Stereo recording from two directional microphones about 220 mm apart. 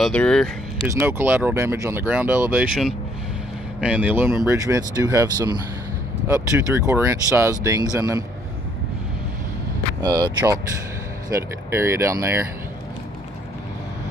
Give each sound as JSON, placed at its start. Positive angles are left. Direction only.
{"t": 0.0, "sound": "speech", "side_deg": 5}
{"t": 0.9, "sound": "speech", "side_deg": -10}
{"t": 10.0, "sound": "speech", "side_deg": -15}
{"t": 11.7, "sound": "speech", "side_deg": -10}